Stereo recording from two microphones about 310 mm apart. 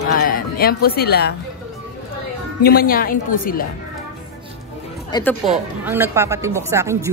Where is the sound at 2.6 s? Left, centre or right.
Left.